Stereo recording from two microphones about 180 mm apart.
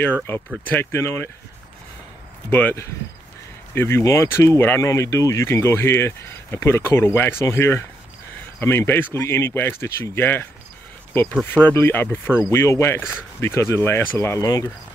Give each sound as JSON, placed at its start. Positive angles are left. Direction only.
{"t": 0.3, "sound": "speech", "side_deg": 10}
{"t": 2.5, "sound": "speech", "side_deg": 10}
{"t": 11.4, "sound": "speech", "side_deg": 10}